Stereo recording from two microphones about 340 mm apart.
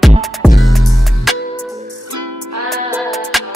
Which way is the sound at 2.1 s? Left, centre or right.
Right.